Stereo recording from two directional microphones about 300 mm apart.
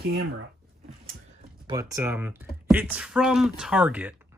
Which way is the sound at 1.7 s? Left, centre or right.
Centre.